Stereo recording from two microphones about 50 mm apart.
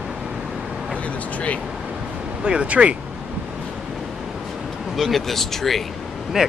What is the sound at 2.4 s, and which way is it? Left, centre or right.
Speech, right.